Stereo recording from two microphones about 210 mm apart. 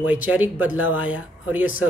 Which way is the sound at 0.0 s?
5° right (ahead or behind).